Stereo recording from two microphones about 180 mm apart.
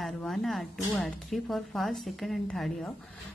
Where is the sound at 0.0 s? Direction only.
Centre (ahead or behind).